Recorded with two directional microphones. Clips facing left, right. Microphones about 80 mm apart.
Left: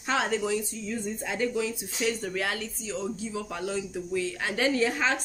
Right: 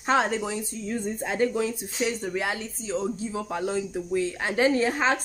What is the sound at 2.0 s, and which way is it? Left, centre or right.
A woman's voice, right.